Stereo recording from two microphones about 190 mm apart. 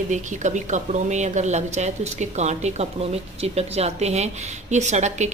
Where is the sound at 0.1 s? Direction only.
40° right (ahead or behind).